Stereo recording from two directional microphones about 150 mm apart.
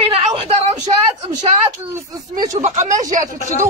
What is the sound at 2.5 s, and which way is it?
Speech, 55° right (ahead or behind).